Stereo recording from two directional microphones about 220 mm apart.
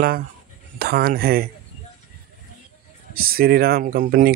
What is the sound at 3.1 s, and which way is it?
Speech, 40° right (ahead or behind).